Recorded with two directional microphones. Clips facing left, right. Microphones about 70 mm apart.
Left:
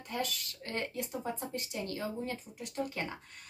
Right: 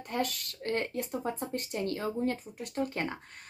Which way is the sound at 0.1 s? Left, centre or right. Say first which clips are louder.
Right 4 dB; right.